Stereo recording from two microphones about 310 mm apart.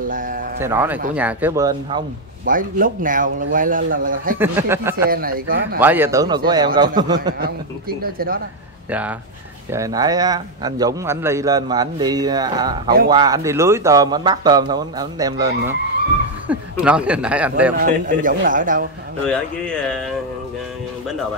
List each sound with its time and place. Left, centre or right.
0.1 s a sound: right
0.6 s a man's voice: centre
2.4 s a man's voice: right
4.4 s a man's voice: centre
5.1 s a man's voice: right
5.8 s a man's voice: centre
8.0 s a man's voice: right
9.7 s a man's voice: centre
16.5 s a man's voice: centre
17.7 s a man's voice: right
19.2 s a man's voice: centre